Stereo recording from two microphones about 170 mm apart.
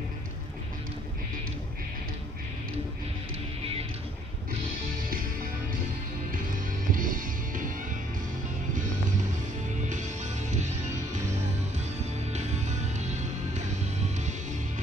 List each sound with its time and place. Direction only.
6.9 s music: 55° right (ahead or behind)
9.8 s music: 45° right (ahead or behind)
12.3 s music: 45° right (ahead or behind)